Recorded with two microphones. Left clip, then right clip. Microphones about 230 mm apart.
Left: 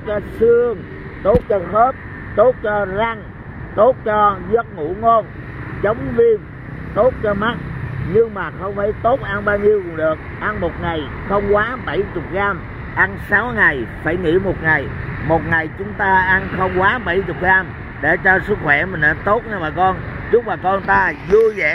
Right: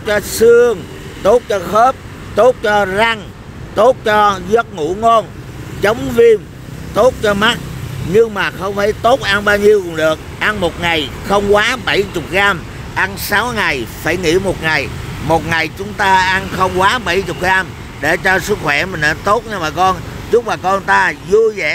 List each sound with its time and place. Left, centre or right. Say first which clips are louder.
0.0 s speech: right 5 dB; right
12.9 s speech: right 1 dB; right